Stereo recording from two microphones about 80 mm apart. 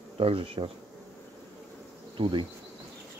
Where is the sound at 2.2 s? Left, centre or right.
Right.